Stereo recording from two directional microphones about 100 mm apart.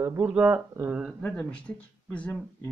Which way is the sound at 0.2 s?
15° right (ahead or behind).